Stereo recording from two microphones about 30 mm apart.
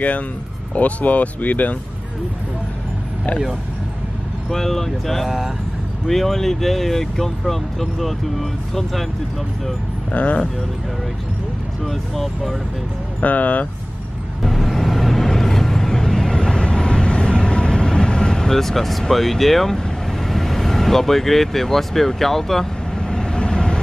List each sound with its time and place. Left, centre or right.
0.7 s speech: left
4.5 s speech: centre
10.2 s speech: left
11.8 s speech: centre
13.2 s speech: left
14.4 s vehicle: centre
16.3 s vehicle: left
18.5 s speech: centre
22.9 s train: left